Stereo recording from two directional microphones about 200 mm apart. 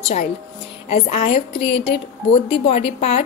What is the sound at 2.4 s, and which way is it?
Speech, 30° left (ahead or behind).